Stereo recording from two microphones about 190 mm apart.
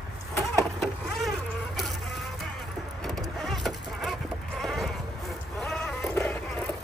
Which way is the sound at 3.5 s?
Centre (ahead or behind).